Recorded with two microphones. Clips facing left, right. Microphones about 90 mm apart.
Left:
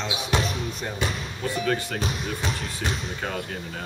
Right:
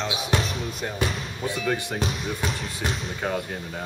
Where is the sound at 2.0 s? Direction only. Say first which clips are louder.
Right 1 dB; centre (ahead or behind).